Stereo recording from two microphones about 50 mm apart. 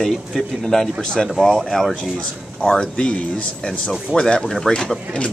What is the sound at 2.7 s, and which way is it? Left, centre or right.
Speech, left.